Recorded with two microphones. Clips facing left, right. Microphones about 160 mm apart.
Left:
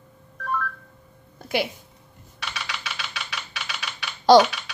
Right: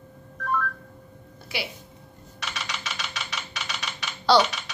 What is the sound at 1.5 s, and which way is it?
Speech, 50° left (ahead or behind).